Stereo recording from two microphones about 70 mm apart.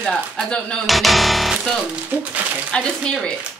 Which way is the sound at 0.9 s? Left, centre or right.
Centre.